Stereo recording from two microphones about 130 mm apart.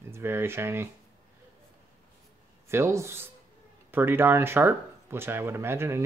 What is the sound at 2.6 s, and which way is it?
Speech, 20° right (ahead or behind).